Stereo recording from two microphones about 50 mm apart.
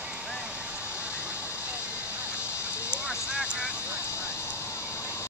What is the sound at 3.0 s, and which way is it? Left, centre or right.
Vehicle, right.